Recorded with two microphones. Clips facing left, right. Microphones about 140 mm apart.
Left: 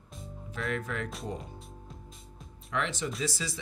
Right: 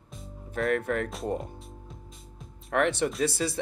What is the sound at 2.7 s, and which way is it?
Speech, 60° right (ahead or behind).